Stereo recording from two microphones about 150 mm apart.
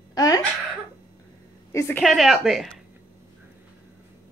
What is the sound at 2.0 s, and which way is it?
Speech, centre (ahead or behind).